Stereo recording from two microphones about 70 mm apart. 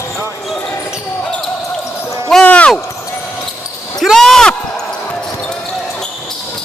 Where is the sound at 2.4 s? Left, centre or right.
Centre.